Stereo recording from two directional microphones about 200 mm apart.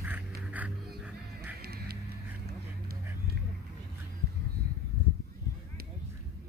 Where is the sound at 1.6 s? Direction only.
50° right (ahead or behind).